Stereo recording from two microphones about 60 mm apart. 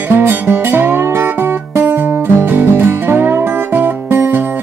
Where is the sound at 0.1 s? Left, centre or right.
Right.